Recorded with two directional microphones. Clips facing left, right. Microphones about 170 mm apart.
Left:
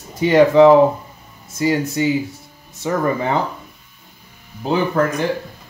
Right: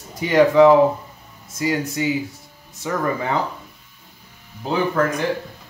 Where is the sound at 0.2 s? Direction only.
25° left (ahead or behind).